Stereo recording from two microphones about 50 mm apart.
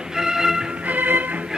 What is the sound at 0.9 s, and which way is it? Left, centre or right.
Music, right.